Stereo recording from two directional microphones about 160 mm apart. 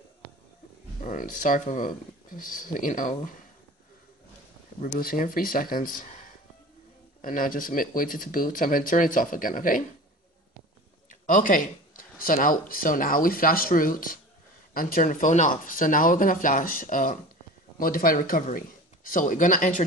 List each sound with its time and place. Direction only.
1.0 s speech: 55° left (ahead or behind)
4.9 s speech: 60° left (ahead or behind)
11.1 s speech: 55° left (ahead or behind)